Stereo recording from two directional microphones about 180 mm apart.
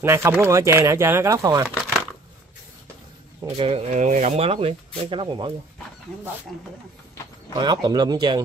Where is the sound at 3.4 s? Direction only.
30° right (ahead or behind).